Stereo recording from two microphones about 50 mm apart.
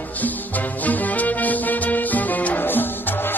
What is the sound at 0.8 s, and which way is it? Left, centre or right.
Music, left.